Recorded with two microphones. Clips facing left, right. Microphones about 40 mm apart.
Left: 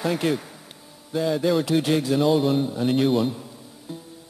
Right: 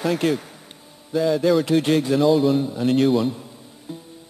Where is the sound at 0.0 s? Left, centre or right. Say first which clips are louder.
Right 2 dB; centre.